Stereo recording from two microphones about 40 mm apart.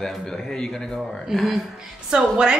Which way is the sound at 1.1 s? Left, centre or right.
Centre.